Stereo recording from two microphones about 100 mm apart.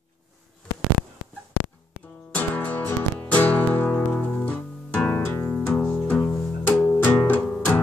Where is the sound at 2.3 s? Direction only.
15° left (ahead or behind).